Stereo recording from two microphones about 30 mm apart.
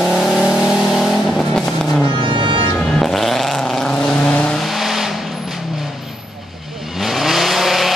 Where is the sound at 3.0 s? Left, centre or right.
Centre.